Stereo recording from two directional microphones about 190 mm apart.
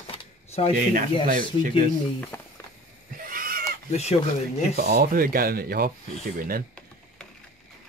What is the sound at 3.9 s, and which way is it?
Speech, 35° left (ahead or behind).